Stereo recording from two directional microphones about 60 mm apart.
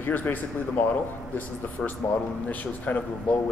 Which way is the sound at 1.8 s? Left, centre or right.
Centre.